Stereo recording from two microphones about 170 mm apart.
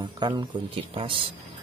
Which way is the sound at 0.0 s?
25° right (ahead or behind).